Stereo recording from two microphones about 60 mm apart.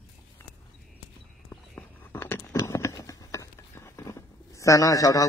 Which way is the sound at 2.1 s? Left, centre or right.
Left.